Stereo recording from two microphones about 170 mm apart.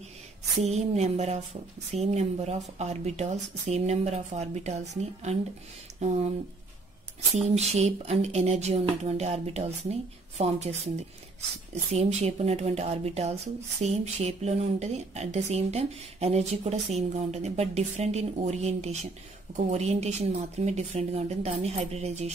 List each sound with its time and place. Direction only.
0.6 s speech: 40° right (ahead or behind)
7.4 s speech: 40° right (ahead or behind)